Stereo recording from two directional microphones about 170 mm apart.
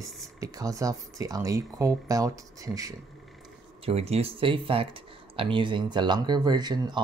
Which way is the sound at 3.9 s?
35° right (ahead or behind).